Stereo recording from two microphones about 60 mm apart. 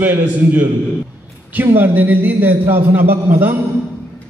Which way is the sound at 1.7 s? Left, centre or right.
Right.